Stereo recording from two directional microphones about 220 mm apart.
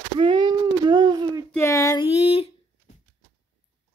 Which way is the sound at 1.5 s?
10° left (ahead or behind).